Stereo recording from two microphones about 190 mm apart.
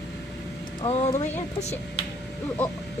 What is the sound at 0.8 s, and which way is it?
Speech, 35° left (ahead or behind).